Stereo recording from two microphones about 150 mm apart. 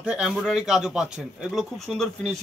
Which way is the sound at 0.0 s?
5° right (ahead or behind).